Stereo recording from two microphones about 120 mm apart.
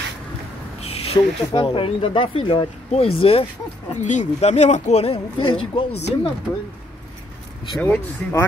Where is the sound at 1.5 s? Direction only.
45° left (ahead or behind).